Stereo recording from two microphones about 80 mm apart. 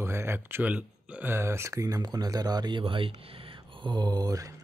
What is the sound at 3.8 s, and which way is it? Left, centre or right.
Speech, right.